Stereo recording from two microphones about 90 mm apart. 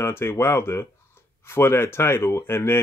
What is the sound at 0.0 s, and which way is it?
Speech, 30° left (ahead or behind).